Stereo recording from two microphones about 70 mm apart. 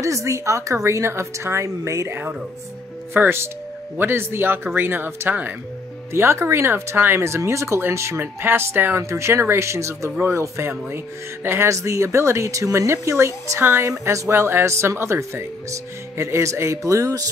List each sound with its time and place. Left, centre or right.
0.0 s speech: right
3.1 s a woman's voice: right
11.7 s a woman's voice: right